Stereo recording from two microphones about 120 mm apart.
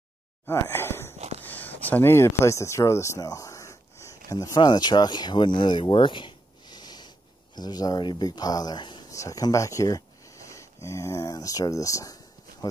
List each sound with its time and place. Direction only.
0.5 s sigh: 20° left (ahead or behind)
1.4 s a sound: 15° left (ahead or behind)
4.6 s speech: 35° left (ahead or behind)
9.1 s speech: 30° left (ahead or behind)